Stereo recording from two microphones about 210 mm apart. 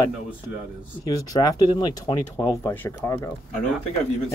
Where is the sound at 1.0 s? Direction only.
15° left (ahead or behind).